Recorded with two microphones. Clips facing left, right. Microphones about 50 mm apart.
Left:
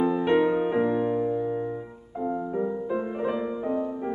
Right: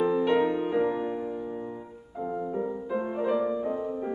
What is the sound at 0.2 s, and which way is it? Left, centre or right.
Music, centre.